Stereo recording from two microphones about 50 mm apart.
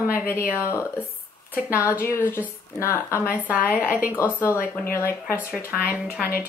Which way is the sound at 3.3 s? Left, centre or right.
Right.